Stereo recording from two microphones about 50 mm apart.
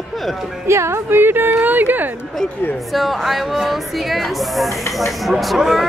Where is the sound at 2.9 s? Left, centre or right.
Centre.